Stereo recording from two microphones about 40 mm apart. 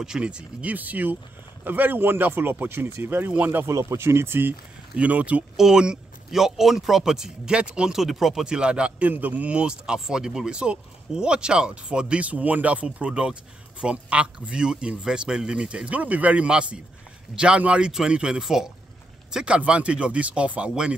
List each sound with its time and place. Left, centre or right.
0.2 s speech: right
0.7 s speech: right
1.6 s speech: right
4.9 s speech: right
5.6 s a man's voice: centre
7.9 s a man's voice: centre
8.5 s speech: right
9.1 s speech: right
9.9 s speech: centre
12.3 s speech: right
16.4 s speech: right
18.4 s a man's voice: centre
19.4 s speech: right